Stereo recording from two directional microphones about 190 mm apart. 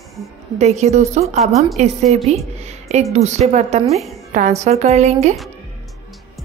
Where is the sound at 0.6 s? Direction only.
35° right (ahead or behind).